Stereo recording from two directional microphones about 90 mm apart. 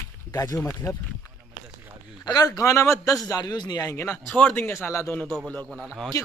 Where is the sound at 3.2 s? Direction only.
45° left (ahead or behind).